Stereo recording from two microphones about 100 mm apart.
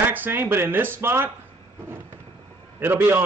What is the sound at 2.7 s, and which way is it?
Speech, 25° right (ahead or behind).